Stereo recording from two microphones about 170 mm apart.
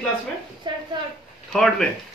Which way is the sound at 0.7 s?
25° right (ahead or behind).